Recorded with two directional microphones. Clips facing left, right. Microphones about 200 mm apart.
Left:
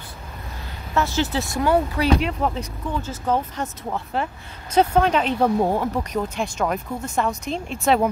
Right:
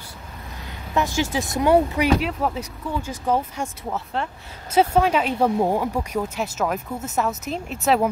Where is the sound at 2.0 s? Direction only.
5° right (ahead or behind).